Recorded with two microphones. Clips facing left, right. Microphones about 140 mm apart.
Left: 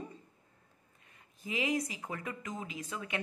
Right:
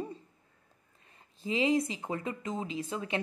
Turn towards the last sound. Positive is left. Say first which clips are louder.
# right 6 dB
turn(degrees=-30)  # may be behind; listen again after turning